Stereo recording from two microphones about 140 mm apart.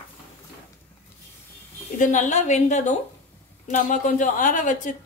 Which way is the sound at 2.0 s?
60° left (ahead or behind).